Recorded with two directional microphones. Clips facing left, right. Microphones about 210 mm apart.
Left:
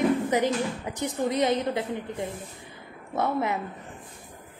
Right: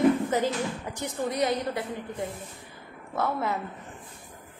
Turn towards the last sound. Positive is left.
turn(degrees=20)  # may be behind; listen again after turning